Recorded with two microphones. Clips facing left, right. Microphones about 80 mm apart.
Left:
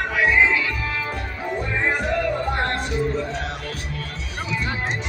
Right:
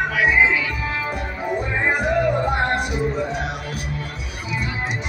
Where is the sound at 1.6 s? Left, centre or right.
Centre.